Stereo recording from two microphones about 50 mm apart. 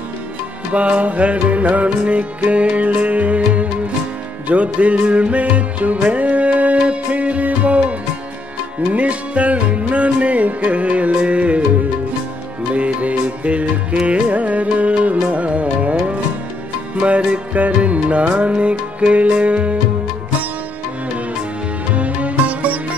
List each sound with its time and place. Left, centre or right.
0.7 s music: right
8.9 s music: right
12.7 s music: right
17.0 s music: right
21.9 s music: right